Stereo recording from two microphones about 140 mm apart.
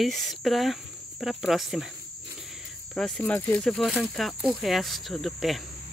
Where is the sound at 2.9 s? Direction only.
5° left (ahead or behind).